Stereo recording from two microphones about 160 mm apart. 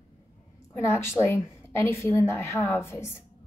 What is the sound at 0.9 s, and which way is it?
Speech, 15° left (ahead or behind).